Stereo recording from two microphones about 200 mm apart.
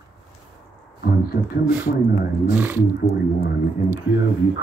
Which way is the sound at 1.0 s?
50° left (ahead or behind).